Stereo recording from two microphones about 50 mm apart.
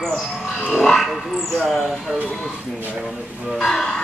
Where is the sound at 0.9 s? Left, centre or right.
Centre.